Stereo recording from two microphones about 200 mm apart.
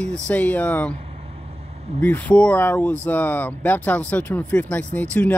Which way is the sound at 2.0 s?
10° left (ahead or behind).